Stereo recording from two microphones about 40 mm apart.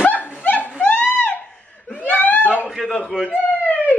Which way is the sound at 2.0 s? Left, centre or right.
Left.